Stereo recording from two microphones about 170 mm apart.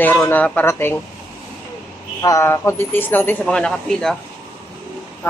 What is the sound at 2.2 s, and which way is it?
Speech, 20° left (ahead or behind).